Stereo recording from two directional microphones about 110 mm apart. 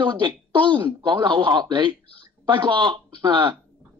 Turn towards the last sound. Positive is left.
turn(degrees=-45)  # may be behind; listen again after turning